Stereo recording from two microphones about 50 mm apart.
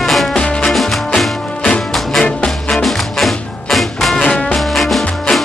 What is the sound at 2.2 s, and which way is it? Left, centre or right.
Music, left.